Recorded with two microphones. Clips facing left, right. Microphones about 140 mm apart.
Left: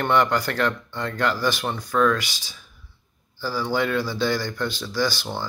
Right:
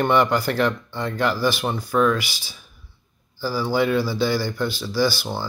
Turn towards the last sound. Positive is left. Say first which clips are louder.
# right 3 dB
turn(degrees=-10)  # may be behind; listen again after turning